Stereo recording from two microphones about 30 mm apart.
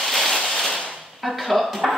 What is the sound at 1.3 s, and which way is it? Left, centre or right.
Speech, centre.